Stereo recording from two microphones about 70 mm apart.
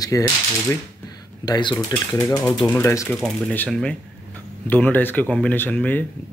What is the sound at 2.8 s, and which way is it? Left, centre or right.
Speech, left.